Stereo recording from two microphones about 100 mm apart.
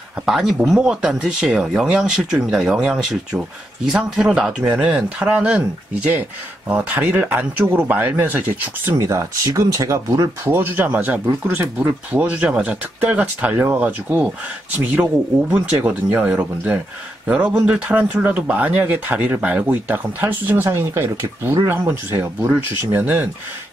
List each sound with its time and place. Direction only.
0.2 s speech: 5° right (ahead or behind)
6.7 s speech: 15° right (ahead or behind)
8.9 s speech: 35° right (ahead or behind)
10.4 s speech: 20° right (ahead or behind)
15.5 s speech: 15° right (ahead or behind)